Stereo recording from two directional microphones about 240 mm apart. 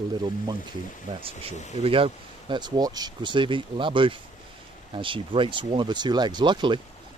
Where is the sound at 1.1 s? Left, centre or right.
Right.